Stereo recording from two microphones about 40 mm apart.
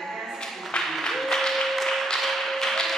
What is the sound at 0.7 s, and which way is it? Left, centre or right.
Music, left.